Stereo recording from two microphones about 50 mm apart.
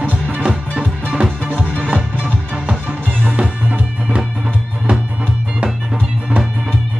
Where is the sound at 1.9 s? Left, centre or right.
Right.